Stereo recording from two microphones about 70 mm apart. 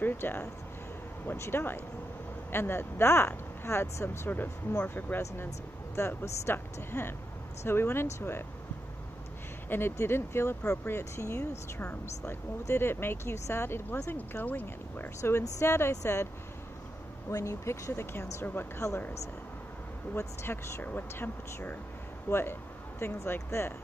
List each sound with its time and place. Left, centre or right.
0.0 s speech: left
4.3 s speech: left
5.9 s speech: left
9.7 s speech: left
12.6 s speech: left
15.1 s speech: left
17.3 s speech: left
20.2 s speech: left